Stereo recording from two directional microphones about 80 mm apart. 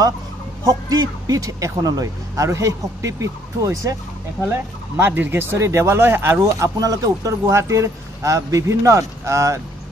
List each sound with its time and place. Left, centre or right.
0.7 s speech: right
4.5 s speech: right
6.4 s speech: right